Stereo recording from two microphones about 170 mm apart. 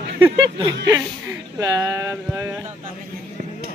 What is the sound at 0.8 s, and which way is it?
Speech, 20° right (ahead or behind).